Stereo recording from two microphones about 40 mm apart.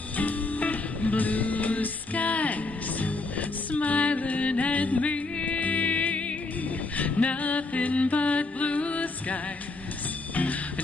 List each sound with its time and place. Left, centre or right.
0.2 s music: left
7.0 s a sound: left
10.3 s music: left